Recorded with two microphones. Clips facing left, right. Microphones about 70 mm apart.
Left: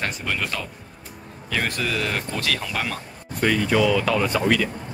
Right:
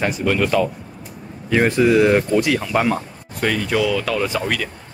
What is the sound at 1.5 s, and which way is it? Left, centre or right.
Speech, right.